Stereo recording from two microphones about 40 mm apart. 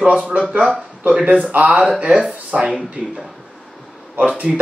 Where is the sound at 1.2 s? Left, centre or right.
Right.